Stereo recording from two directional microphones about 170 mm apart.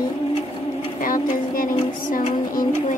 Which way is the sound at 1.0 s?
55° left (ahead or behind).